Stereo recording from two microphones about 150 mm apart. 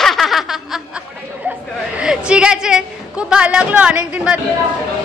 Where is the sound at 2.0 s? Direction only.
5° right (ahead or behind).